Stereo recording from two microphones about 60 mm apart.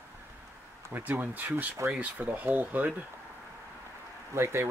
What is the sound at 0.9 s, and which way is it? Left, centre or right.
Speech, right.